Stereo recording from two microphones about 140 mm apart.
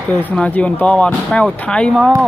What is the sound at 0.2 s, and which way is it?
Speech, 10° left (ahead or behind).